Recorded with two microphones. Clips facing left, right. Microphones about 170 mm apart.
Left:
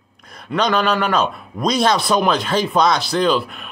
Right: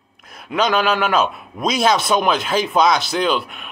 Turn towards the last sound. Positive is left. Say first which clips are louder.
# left 2 dB
turn(degrees=0)  # may be behind; listen again after turning